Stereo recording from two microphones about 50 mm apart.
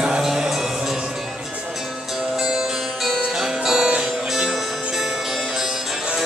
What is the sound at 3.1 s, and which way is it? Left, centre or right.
Music, centre.